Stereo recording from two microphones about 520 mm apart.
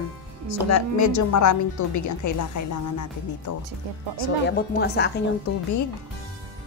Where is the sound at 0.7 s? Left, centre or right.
Left.